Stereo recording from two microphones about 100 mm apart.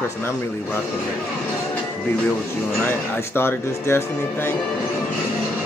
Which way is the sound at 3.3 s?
25° left (ahead or behind).